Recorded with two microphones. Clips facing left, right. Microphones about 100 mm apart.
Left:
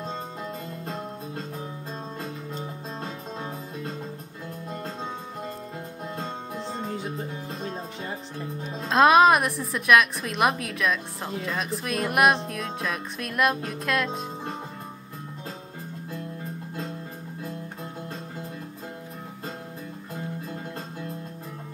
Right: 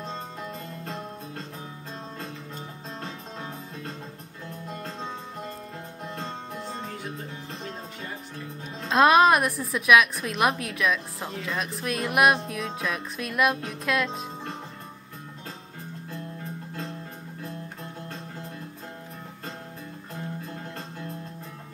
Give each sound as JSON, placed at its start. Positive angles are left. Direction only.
{"t": 6.5, "sound": "music", "side_deg": 25}
{"t": 8.8, "sound": "a woman's voice", "side_deg": 0}